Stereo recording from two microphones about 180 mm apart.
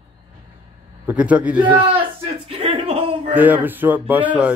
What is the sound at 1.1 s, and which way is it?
Speech, 10° right (ahead or behind).